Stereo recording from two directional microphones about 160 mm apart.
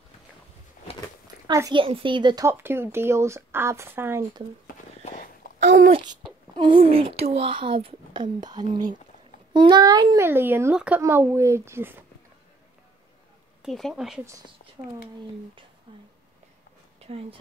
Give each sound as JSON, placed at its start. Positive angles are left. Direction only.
{"t": 1.2, "sound": "a woman's voice", "side_deg": -25}
{"t": 2.4, "sound": "speech", "side_deg": -15}
{"t": 5.0, "sound": "a sound", "side_deg": 55}
{"t": 5.9, "sound": "a child's voice", "side_deg": -30}
{"t": 10.2, "sound": "speech", "side_deg": -15}
{"t": 13.6, "sound": "speech", "side_deg": 0}
{"t": 14.8, "sound": "a child's voice", "side_deg": -25}